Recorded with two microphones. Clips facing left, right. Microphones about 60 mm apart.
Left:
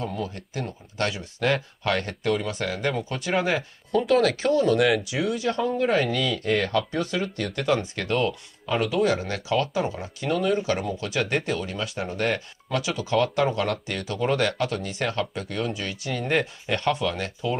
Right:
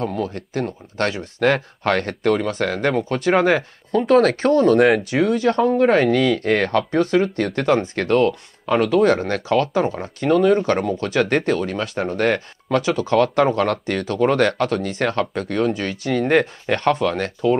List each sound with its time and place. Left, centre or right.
0.0 s speech: right